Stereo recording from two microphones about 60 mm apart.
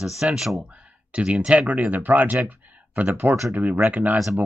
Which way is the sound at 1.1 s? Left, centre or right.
Right.